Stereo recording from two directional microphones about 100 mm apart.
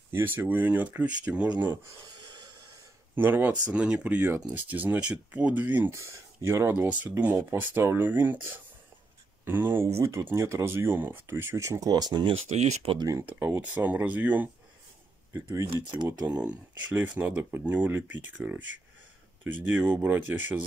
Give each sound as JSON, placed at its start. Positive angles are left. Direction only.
{"t": 0.1, "sound": "speech", "side_deg": -20}
{"t": 3.2, "sound": "speech", "side_deg": -20}
{"t": 5.9, "sound": "speech", "side_deg": -30}
{"t": 9.4, "sound": "speech", "side_deg": -20}
{"t": 12.4, "sound": "speech", "side_deg": -90}
{"t": 13.2, "sound": "speech", "side_deg": -20}
{"t": 15.7, "sound": "speech", "side_deg": -50}
{"t": 16.4, "sound": "speech", "side_deg": -20}
{"t": 17.4, "sound": "speech", "side_deg": -25}